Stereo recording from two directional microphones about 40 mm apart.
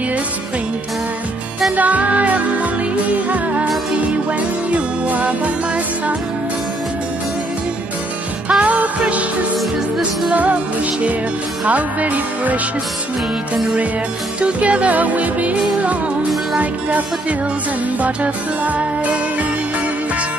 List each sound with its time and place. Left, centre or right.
1.8 s music: right
8.5 s music: right
9.6 s music: centre
10.3 s music: right
14.4 s music: right
16.5 s music: right